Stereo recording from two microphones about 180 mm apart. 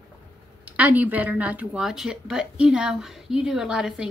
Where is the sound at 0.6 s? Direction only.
10° right (ahead or behind).